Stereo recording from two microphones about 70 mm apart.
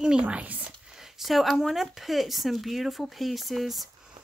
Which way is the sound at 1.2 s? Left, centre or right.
Centre.